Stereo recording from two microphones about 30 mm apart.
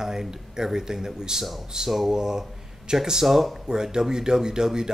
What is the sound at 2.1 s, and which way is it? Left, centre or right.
Speech, right.